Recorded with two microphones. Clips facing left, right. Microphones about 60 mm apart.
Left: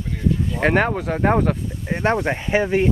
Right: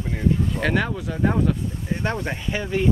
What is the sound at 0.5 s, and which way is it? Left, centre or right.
Speech, left.